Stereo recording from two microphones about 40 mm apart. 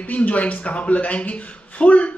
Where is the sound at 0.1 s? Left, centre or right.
Left.